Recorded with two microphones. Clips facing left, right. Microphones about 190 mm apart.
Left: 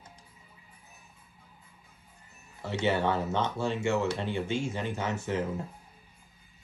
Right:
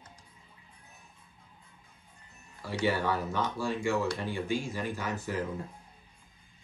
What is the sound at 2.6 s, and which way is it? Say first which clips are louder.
Speech: left 2 dB; 25° left (ahead or behind).